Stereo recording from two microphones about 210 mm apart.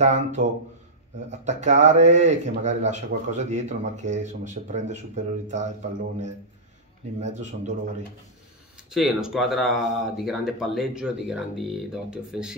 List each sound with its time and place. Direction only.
0.0 s speech: 35° right (ahead or behind)
7.2 s speech: 35° right (ahead or behind)
8.9 s speech: centre (ahead or behind)